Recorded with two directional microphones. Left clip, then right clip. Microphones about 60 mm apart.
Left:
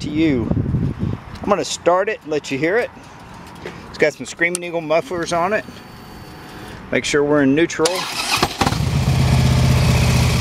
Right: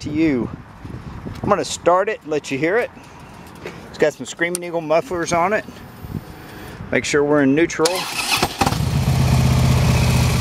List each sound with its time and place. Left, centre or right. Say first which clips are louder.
0.0 s speech: left 1 dB; centre
1.4 s speech: even; centre
4.7 s speech: right 3 dB; centre
6.9 s speech: even; centre
7.8 s vehicle: even; centre